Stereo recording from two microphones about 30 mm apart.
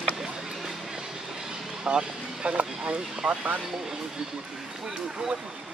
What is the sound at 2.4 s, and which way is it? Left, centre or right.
Speech, right.